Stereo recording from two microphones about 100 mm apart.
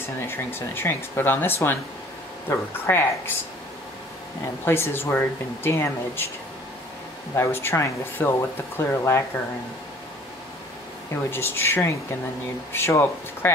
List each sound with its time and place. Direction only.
0.0 s speech: 25° left (ahead or behind)
4.6 s speech: 25° left (ahead or behind)
7.3 s speech: 25° left (ahead or behind)
11.2 s speech: 25° left (ahead or behind)